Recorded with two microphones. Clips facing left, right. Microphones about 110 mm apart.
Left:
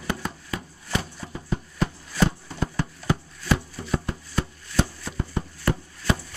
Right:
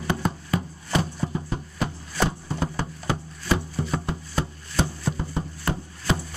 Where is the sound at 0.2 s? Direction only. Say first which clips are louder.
Right 6 dB; 35° right (ahead or behind).